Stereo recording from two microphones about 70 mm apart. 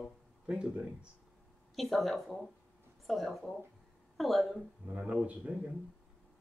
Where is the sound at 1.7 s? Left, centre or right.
Centre.